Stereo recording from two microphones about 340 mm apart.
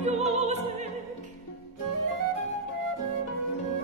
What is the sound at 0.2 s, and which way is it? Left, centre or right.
Music, centre.